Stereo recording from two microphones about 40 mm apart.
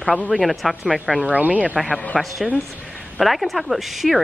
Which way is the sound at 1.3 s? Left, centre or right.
Right.